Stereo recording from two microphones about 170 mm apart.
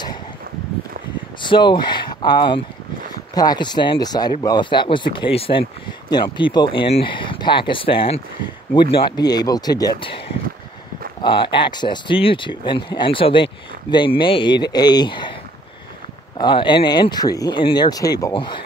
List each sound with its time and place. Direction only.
1.4 s speech: 30° left (ahead or behind)
11.2 s speech: 30° left (ahead or behind)
16.3 s speech: 25° left (ahead or behind)